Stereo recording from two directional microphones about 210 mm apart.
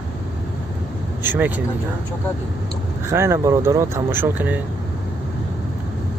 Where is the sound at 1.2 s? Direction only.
10° right (ahead or behind).